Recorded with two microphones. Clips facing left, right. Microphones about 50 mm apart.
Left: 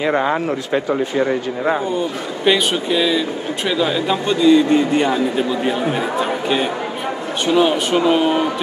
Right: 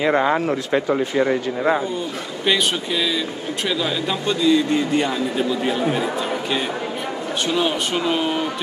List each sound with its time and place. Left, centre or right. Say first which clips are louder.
2.4 s speech: left 4 dB; centre
4.6 s a man's voice: left 4 dB; left
7.4 s speech: left 7 dB; centre